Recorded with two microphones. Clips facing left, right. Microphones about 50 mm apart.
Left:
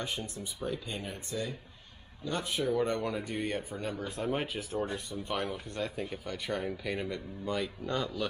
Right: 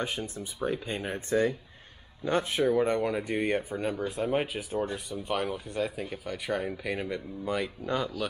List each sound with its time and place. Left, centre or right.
0.0 s speech: right
2.2 s speech: right; by 8.1 s centre